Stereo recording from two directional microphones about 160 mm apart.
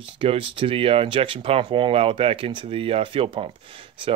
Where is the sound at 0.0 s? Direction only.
35° right (ahead or behind).